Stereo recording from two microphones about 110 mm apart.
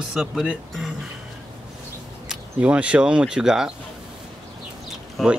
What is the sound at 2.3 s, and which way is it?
Speech, 10° right (ahead or behind).